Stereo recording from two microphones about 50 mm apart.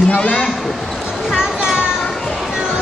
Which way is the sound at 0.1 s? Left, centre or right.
Left.